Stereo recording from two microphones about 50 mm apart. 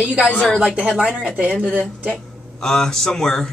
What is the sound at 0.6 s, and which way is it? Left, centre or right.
Speech, right.